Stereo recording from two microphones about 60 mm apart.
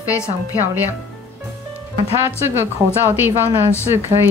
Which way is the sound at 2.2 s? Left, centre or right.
Right.